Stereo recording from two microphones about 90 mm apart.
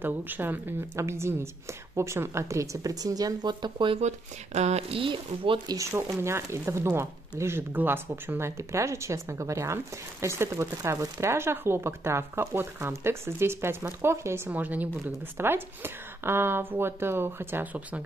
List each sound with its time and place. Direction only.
0.0 s a woman's voice: 20° right (ahead or behind); by 4.0 s 65° right (ahead or behind)
4.8 s speech: 80° right
5.9 s a woman's voice: 30° right (ahead or behind)